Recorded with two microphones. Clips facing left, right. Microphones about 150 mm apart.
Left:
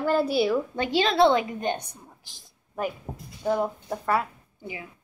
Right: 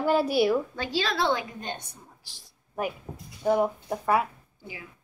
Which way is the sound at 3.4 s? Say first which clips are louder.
Right 2 dB; 10° right (ahead or behind).